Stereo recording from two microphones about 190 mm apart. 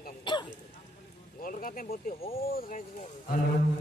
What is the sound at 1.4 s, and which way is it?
Speech, 45° left (ahead or behind).